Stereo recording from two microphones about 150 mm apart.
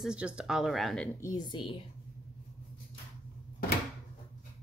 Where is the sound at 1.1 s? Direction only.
25° left (ahead or behind).